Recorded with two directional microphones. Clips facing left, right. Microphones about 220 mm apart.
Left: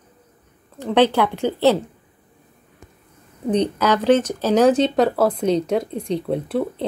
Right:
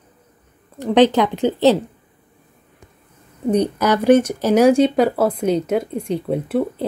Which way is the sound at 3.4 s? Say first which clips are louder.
Right 2 dB; 10° right (ahead or behind).